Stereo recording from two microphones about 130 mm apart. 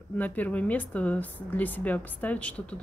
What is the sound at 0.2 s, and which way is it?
Speech, 10° left (ahead or behind).